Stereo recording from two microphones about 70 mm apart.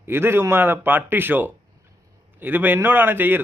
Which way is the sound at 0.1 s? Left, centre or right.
Right.